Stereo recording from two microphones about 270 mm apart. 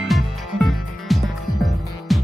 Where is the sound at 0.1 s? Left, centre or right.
Centre.